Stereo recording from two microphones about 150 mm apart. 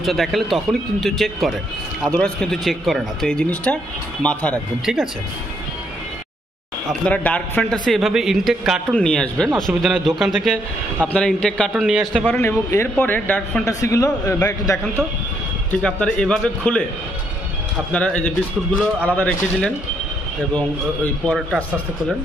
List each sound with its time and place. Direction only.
0.0 s a man's voice: centre (ahead or behind)
6.9 s a man's voice: 10° left (ahead or behind)
11.7 s a man's voice: 5° right (ahead or behind)
12.4 s speech: 15° left (ahead or behind)
15.8 s speech: 5° left (ahead or behind)
17.9 s a man's voice: 10° left (ahead or behind)